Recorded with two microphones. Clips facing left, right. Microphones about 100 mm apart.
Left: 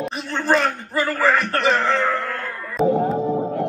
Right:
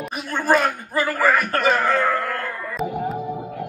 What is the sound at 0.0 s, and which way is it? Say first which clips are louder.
Speech: left 1 dB; 10° right (ahead or behind).